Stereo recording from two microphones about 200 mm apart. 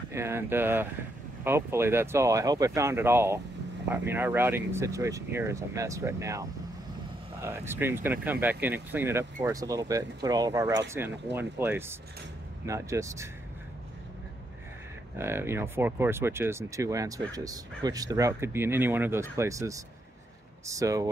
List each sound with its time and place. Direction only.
0.1 s speech: 10° right (ahead or behind)
7.4 s speech: 10° right (ahead or behind)
15.1 s speech: 10° right (ahead or behind)